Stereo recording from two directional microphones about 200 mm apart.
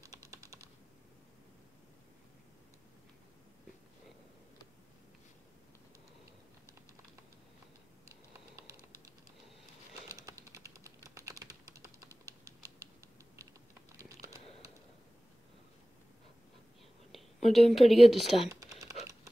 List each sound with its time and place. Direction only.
0.0 s typing: 15° right (ahead or behind)
8.1 s computer keyboard: 15° right (ahead or behind)
10.0 s typing: 15° right (ahead or behind)
17.1 s a woman's voice: centre (ahead or behind)
18.5 s typing: 15° right (ahead or behind)